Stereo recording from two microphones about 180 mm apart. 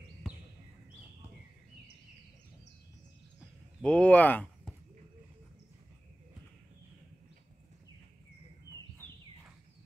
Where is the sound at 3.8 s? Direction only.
5° left (ahead or behind).